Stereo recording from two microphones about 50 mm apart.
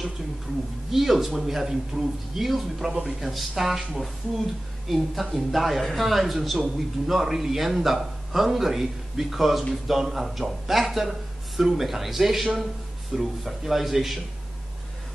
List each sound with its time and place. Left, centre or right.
0.9 s speech: centre
2.9 s a man's voice: centre
3.2 s speech: centre